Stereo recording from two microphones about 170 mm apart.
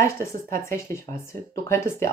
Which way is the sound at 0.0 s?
15° left (ahead or behind).